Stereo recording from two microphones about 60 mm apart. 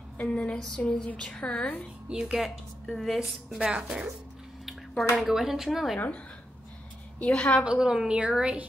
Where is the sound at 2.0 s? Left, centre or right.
Centre.